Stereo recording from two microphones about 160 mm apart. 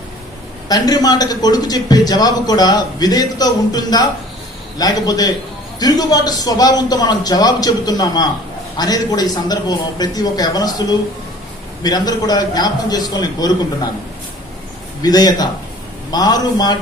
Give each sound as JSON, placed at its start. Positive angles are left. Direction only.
{"t": 0.7, "sound": "a man's voice", "side_deg": 25}
{"t": 15.0, "sound": "a man's voice", "side_deg": 25}